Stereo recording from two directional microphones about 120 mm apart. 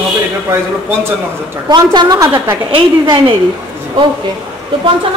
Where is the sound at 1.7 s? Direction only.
35° right (ahead or behind).